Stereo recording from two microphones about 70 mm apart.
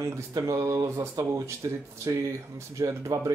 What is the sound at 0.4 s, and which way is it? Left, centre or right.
Speech, right.